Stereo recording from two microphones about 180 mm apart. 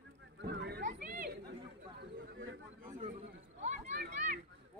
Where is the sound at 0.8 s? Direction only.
50° right (ahead or behind).